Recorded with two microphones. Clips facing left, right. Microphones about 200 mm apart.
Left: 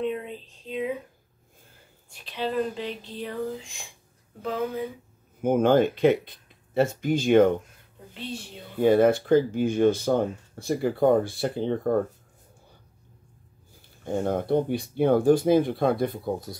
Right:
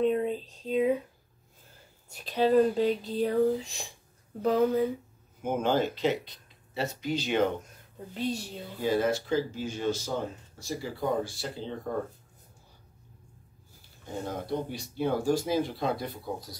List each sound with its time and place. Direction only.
0.0 s a sound: 40° right (ahead or behind)
2.0 s speech: 40° right (ahead or behind)
5.4 s speech: 55° left (ahead or behind)
8.1 s speech: 40° right (ahead or behind)
8.7 s speech: 55° left (ahead or behind)
14.1 s speech: 55° left (ahead or behind)